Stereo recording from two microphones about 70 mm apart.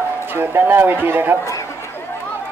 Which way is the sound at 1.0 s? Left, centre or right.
Right.